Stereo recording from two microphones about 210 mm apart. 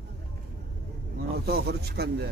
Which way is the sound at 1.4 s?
50° right (ahead or behind).